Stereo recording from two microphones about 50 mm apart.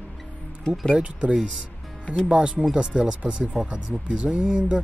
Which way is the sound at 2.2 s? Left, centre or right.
Centre.